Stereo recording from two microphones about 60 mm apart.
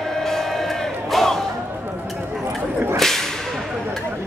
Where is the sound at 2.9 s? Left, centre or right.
Centre.